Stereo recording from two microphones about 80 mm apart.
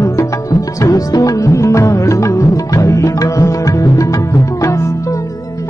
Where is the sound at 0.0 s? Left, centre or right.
Left.